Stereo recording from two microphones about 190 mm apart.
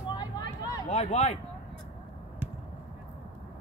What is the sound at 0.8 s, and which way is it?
Speech, 35° left (ahead or behind).